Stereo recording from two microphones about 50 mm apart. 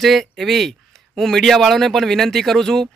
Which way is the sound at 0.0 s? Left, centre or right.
Centre.